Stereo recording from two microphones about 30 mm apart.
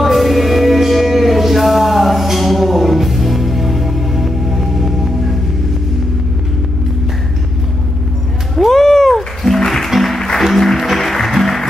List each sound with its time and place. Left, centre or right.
0.0 s music: centre
8.5 s cat: centre
9.4 s music: centre